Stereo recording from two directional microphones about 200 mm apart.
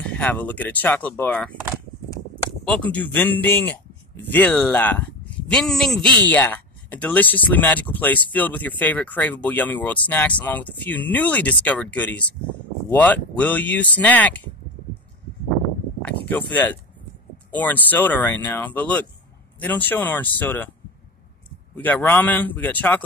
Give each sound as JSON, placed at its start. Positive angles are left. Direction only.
{"t": 0.0, "sound": "speech", "side_deg": 5}
{"t": 2.6, "sound": "speech", "side_deg": 5}
{"t": 16.3, "sound": "speech", "side_deg": 10}
{"t": 21.8, "sound": "speech", "side_deg": 10}